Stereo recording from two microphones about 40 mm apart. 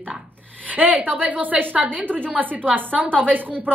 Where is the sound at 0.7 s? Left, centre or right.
Right.